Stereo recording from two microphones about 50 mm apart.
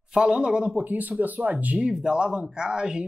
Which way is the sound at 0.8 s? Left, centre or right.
Right.